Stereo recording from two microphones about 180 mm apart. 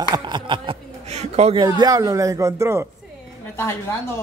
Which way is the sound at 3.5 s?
15° left (ahead or behind).